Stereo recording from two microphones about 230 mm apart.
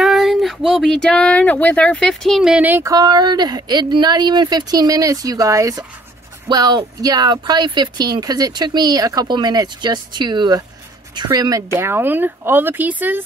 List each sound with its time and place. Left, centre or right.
0.0 s speech: centre